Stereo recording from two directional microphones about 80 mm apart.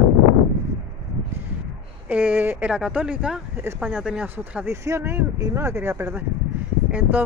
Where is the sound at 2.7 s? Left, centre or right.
Centre.